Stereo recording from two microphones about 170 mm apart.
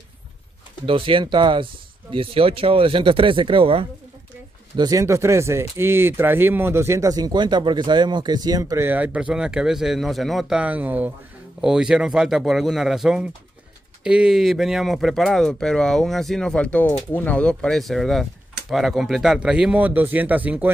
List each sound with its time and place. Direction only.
0.8 s speech: 30° right (ahead or behind)
4.7 s speech: 20° right (ahead or behind)